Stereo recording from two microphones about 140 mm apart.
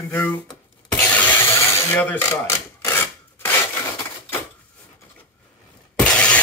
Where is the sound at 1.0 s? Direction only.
10° left (ahead or behind).